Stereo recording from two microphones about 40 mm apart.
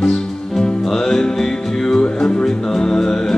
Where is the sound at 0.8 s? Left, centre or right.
Centre.